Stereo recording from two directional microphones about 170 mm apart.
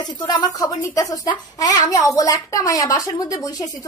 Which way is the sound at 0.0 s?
25° left (ahead or behind).